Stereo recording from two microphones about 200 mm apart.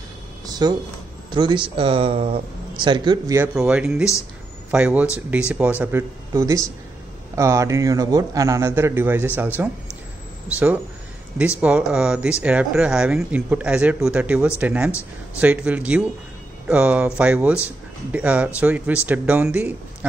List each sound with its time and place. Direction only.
0.5 s speech: 20° right (ahead or behind)
3.5 s speech: 5° right (ahead or behind)
11.6 s speech: 5° right (ahead or behind)